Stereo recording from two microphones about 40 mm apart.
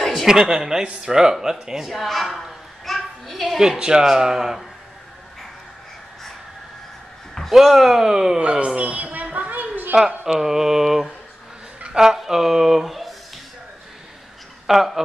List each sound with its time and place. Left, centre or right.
0.3 s speech: centre
1.9 s a woman's voice: centre
2.8 s a sound: centre
3.5 s speech: centre
7.5 s speech: centre
8.4 s a sound: right
9.9 s speech: centre
14.7 s a woman's voice: centre